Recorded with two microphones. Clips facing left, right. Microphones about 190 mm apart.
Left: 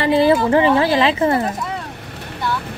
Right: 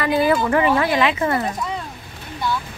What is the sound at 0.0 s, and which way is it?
Speech, 30° left (ahead or behind).